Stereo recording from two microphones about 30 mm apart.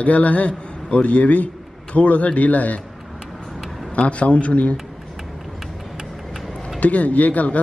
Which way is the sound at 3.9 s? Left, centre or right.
Left.